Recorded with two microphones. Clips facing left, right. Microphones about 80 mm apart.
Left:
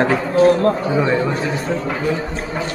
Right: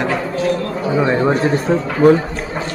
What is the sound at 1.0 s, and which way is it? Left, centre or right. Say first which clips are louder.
Speech: right 4 dB; centre.